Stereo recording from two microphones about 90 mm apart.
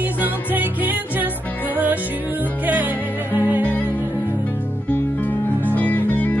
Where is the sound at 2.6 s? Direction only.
20° right (ahead or behind).